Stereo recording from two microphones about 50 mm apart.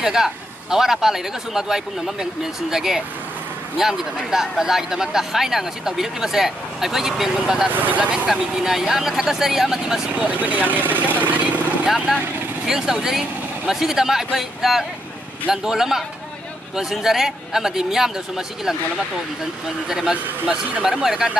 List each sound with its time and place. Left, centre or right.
0.0 s speech: centre
7.6 s speech: right
8.3 s speech: centre
10.1 s speech: right
11.8 s speech: centre
19.9 s speech: centre